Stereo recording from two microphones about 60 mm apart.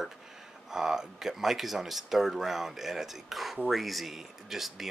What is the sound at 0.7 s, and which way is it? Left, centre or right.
Speech, centre.